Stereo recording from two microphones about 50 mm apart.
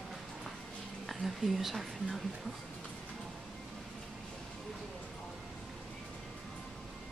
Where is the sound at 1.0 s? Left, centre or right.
Centre.